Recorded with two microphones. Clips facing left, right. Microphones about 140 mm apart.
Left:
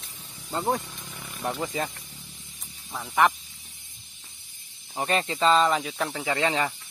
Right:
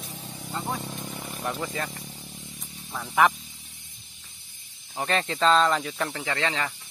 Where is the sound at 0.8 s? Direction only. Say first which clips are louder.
Right 7 dB; 35° right (ahead or behind).